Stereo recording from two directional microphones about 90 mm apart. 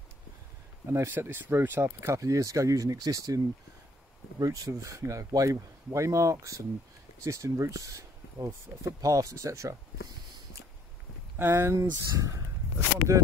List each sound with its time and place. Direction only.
0.8 s speech: 25° right (ahead or behind)
11.3 s speech: 25° right (ahead or behind)
12.2 s a sound: 40° right (ahead or behind)